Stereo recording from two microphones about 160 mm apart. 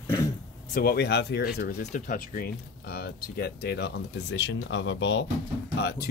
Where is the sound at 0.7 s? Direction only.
70° left (ahead or behind); by 1.7 s 90° left.